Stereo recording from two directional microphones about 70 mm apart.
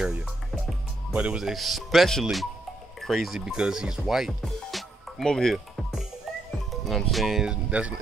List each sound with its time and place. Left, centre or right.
0.0 s speech: centre
1.4 s speech: centre
3.3 s speech: centre
6.7 s speech: centre
7.4 s speech: centre